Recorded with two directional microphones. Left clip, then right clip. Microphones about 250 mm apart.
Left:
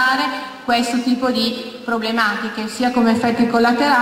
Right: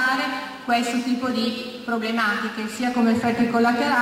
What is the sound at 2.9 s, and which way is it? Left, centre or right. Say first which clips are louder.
Speech: left 3 dB; centre.